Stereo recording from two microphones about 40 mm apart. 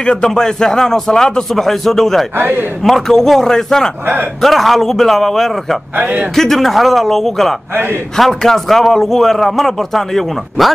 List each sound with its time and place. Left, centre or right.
0.0 s speech: centre
2.3 s a man's voice: right
2.8 s speech: centre
4.0 s speech: right
4.4 s a man's voice: centre
5.9 s a man's voice: right
6.3 s a man's voice: centre